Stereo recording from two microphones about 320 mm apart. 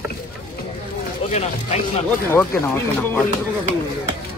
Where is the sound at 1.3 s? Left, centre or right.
Left.